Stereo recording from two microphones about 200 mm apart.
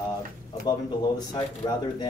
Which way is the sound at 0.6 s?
20° left (ahead or behind).